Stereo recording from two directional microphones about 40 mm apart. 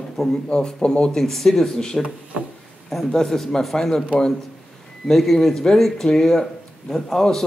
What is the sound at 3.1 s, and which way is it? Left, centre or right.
Speech, centre.